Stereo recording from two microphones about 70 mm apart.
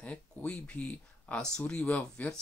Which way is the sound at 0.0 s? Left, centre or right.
Centre.